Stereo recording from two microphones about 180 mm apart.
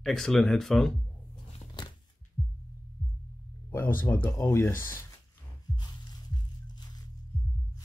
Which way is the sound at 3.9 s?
10° left (ahead or behind).